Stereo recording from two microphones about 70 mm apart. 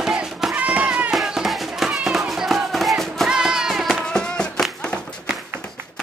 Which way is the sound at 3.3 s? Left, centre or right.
Centre.